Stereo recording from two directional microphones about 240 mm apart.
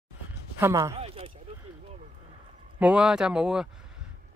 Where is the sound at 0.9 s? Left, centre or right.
Right.